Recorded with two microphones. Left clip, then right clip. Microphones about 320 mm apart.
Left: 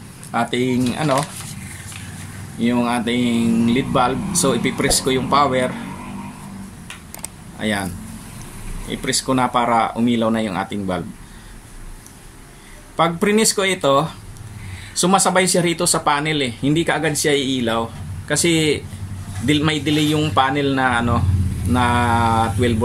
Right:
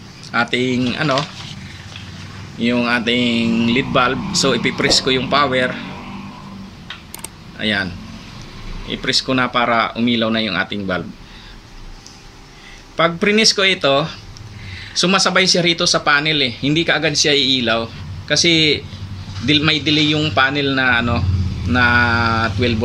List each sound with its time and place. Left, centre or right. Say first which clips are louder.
0.3 s speech: right 2 dB; centre
2.6 s speech: right 3 dB; centre
7.5 s speech: right 4 dB; centre
12.9 s speech: right 2 dB; centre